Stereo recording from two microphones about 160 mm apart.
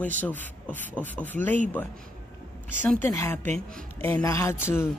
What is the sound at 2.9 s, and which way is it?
Speech, 5° left (ahead or behind).